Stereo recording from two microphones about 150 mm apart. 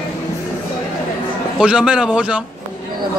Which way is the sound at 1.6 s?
5° right (ahead or behind).